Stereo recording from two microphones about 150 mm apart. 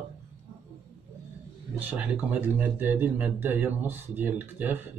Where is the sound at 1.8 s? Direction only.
15° right (ahead or behind).